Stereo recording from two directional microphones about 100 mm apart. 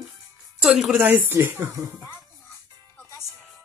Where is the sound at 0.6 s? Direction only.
5° right (ahead or behind).